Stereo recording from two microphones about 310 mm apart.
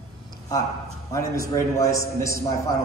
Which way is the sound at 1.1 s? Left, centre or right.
Centre.